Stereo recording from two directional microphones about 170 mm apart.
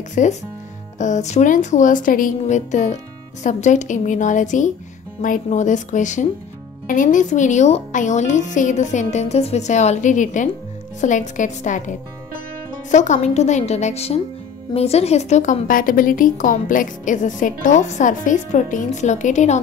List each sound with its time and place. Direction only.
0.1 s a woman's voice: 45° left (ahead or behind)
12.9 s a woman's voice: 45° left (ahead or behind)